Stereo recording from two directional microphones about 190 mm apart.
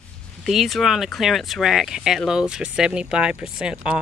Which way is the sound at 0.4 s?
Centre (ahead or behind).